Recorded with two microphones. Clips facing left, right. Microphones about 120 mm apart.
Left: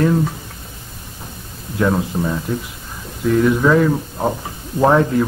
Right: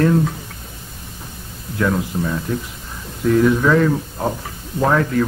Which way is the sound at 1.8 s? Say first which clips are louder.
Left 2 dB; 25° left (ahead or behind).